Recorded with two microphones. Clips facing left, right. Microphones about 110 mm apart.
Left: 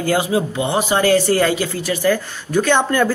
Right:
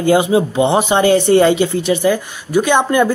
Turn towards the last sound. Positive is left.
turn(degrees=-15)  # may be behind; listen again after turning